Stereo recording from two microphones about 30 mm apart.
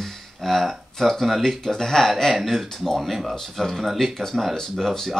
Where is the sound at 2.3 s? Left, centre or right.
Centre.